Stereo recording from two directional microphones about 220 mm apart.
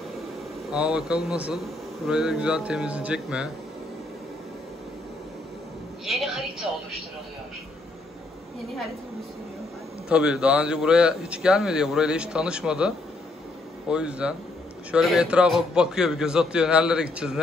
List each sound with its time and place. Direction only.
0.7 s speech: 5° right (ahead or behind)
6.0 s a sound: centre (ahead or behind)
10.0 s speech: 5° right (ahead or behind)